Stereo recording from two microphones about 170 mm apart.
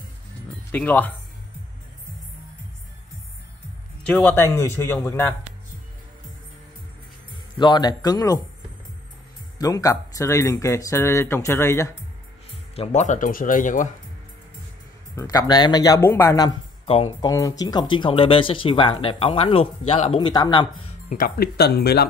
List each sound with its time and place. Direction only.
0.7 s speech: 10° left (ahead or behind)
4.1 s speech: 10° left (ahead or behind)
7.5 s speech: 25° left (ahead or behind)
9.6 s speech: 20° left (ahead or behind)
12.4 s speech: 35° left (ahead or behind); by 13.8 s 50° left (ahead or behind)
15.1 s speech: 20° left (ahead or behind)
16.8 s speech: 35° left (ahead or behind)
17.3 s speech: 20° left (ahead or behind)
21.1 s speech: 60° left (ahead or behind)